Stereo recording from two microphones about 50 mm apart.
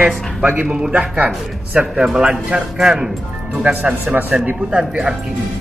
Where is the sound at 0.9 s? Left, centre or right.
Right.